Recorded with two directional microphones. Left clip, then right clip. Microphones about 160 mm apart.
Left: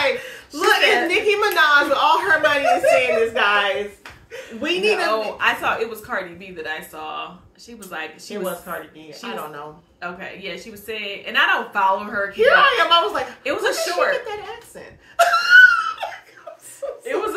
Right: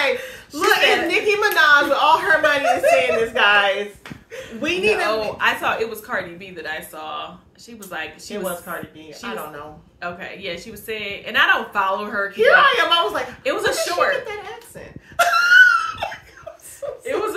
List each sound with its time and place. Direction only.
0.6 s a sound: 5° left (ahead or behind)
4.6 s a woman's voice: 5° left (ahead or behind)
5.0 s a woman's voice: 20° right (ahead or behind)
8.3 s a woman's voice: centre (ahead or behind)
9.9 s a woman's voice: 15° right (ahead or behind)
12.4 s a woman's voice: 5° left (ahead or behind)
13.4 s a woman's voice: 20° right (ahead or behind)
15.1 s wheeze: centre (ahead or behind)
16.8 s chuckle: 5° left (ahead or behind)